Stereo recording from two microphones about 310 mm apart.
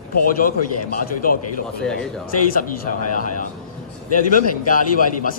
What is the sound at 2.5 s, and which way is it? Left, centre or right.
Speech, left.